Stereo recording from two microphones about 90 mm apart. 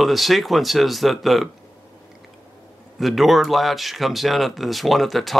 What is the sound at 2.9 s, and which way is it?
Speech, centre (ahead or behind).